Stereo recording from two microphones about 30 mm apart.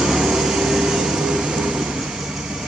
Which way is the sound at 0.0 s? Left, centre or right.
Centre.